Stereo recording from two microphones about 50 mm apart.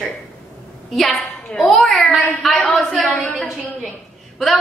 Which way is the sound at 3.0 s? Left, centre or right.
Centre.